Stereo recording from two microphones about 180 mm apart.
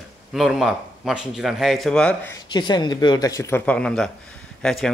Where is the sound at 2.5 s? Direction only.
25° left (ahead or behind).